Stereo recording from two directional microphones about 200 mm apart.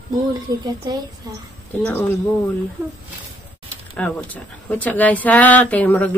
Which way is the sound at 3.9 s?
10° left (ahead or behind).